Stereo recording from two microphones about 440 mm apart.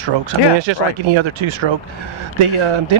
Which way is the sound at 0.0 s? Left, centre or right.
Right.